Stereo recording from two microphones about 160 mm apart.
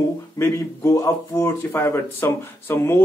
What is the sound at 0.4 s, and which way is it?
Speech, 15° left (ahead or behind).